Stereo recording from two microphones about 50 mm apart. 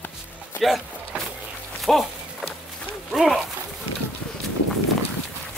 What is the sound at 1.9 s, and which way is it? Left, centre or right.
Speech, centre.